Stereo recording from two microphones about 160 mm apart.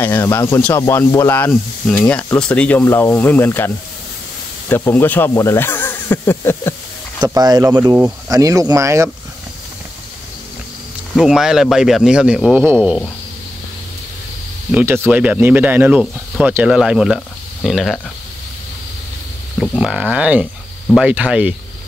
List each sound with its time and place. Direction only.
0.0 s speech: 15° left (ahead or behind)
7.3 s speech: 25° right (ahead or behind)
11.1 s a man's voice: 5° right (ahead or behind)
14.7 s a man's voice: 10° right (ahead or behind)
19.8 s speech: 5° right (ahead or behind)